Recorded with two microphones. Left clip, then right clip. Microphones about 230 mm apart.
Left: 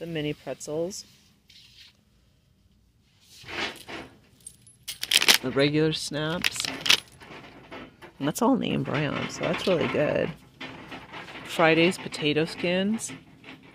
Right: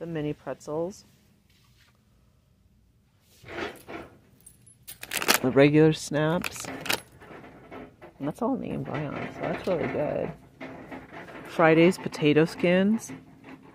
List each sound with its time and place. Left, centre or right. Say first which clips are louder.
0.0 s speech: left 1 dB; centre
5.0 s shuffling cards: left 4 dB; centre
6.0 s speech: right 1 dB; centre
8.4 s speech: left 6 dB; left
11.4 s a sound: even; centre
11.7 s speech: right 2 dB; centre